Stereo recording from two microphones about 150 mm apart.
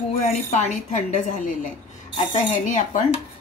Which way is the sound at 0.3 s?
50° left (ahead or behind).